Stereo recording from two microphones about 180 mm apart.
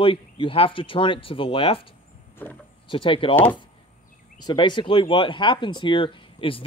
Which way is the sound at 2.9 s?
30° left (ahead or behind).